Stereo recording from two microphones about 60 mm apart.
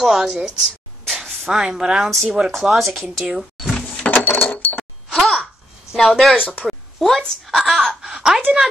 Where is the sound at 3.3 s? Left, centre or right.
Centre.